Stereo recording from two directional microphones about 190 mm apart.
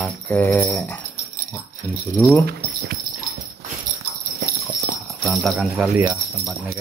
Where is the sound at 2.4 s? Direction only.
55° right (ahead or behind).